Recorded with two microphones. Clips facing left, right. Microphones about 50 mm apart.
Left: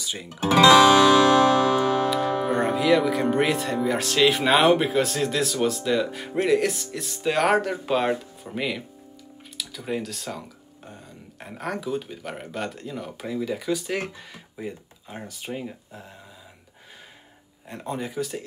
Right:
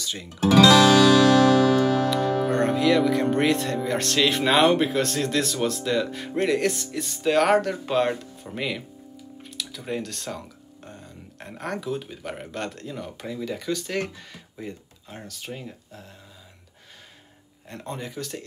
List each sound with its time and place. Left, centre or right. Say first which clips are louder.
0.0 s music: even; centre
0.3 s music: left 1 dB; left
2.0 s music: even; centre
2.5 s speech: left 1 dB; centre
17.6 s speech: left 3 dB; centre